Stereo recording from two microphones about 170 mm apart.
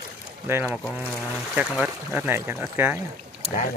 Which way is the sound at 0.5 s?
15° right (ahead or behind).